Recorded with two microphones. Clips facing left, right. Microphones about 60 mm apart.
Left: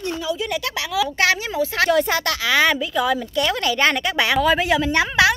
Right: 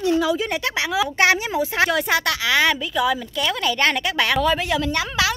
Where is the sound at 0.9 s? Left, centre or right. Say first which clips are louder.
Right 1 dB; right.